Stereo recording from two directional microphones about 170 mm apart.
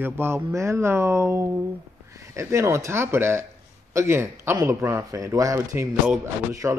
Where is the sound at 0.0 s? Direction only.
15° right (ahead or behind).